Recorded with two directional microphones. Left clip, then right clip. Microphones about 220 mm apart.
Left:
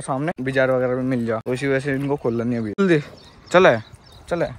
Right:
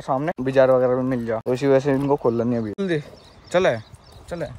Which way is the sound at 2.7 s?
Centre (ahead or behind).